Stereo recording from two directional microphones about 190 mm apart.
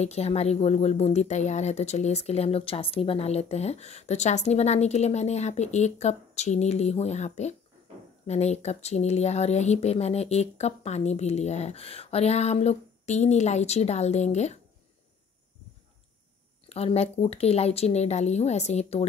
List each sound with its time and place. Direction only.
0.0 s speech: 35° left (ahead or behind)
16.6 s speech: 35° left (ahead or behind)